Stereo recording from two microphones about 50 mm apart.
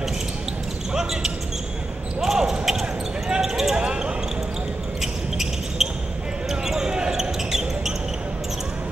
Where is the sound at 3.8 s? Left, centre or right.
Centre.